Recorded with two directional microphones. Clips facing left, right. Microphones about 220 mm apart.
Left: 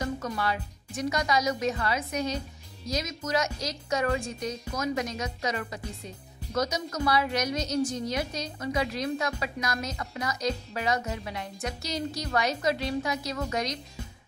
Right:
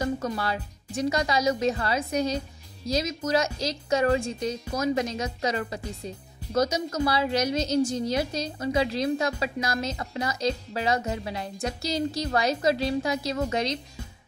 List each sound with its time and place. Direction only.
0.2 s a woman's voice: 30° right (ahead or behind)